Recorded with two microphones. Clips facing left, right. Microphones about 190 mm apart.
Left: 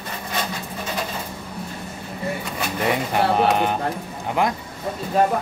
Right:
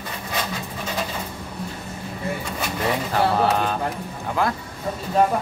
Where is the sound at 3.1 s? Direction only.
20° left (ahead or behind).